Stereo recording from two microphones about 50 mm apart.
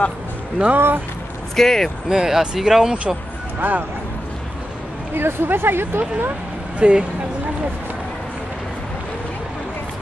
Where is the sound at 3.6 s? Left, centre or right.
Right.